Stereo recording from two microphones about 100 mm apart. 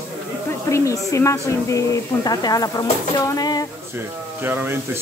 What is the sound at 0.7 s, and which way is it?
Speech, 30° left (ahead or behind).